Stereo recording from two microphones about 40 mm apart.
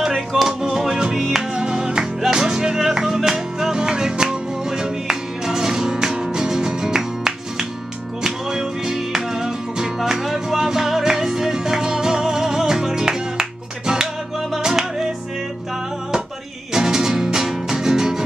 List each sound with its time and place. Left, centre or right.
0.0 s music: centre
16.7 s music: centre